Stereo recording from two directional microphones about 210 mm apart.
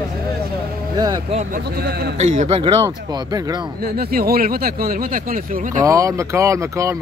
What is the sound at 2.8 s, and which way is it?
Speech, 15° right (ahead or behind).